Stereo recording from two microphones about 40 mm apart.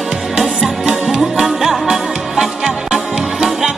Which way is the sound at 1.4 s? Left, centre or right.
Centre.